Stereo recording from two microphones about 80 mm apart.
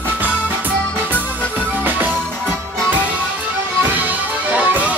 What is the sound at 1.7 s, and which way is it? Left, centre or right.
Music, right.